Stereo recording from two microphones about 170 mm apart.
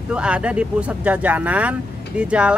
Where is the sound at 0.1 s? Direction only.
5° right (ahead or behind).